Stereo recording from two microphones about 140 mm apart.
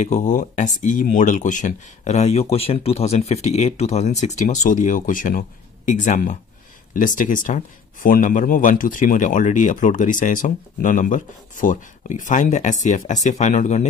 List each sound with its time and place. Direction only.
0.0 s speech: 60° left (ahead or behind)